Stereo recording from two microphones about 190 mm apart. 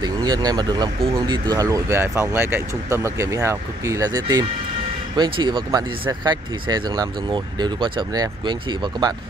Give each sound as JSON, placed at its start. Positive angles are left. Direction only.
{"t": 0.0, "sound": "speech", "side_deg": -20}